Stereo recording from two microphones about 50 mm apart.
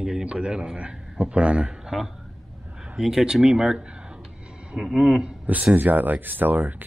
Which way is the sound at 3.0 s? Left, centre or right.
Centre.